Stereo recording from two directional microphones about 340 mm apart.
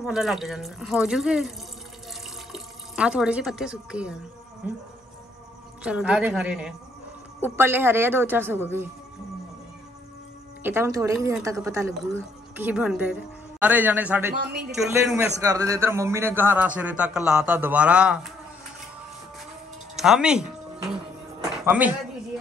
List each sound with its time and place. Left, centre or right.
0.0 s a man's voice: centre
2.5 s speech: centre
5.9 s a man's voice: centre
10.6 s a woman's voice: centre
14.3 s a woman's voice: right
14.9 s a man's voice: centre
20.0 s a man's voice: centre
21.6 s a man's voice: centre